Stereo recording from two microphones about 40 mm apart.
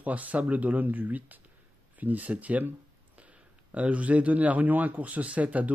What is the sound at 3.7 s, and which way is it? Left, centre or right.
Speech, right.